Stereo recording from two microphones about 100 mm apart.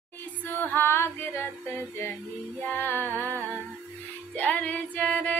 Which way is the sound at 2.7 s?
20° left (ahead or behind).